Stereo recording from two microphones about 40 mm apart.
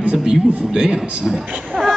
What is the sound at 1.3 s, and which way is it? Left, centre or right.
Speech, centre.